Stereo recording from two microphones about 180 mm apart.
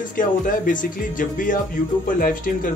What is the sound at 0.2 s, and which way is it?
Speech, 50° left (ahead or behind).